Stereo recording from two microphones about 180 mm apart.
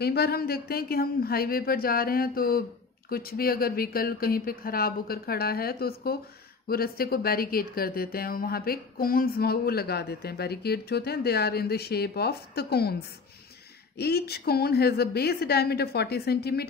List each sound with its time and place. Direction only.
0.0 s speech: 60° left (ahead or behind)
13.9 s speech: 60° left (ahead or behind)